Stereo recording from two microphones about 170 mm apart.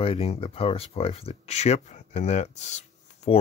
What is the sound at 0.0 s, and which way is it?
Speech, 35° left (ahead or behind).